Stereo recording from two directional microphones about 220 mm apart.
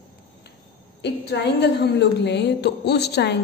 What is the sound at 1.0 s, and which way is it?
A woman's voice, 50° left (ahead or behind).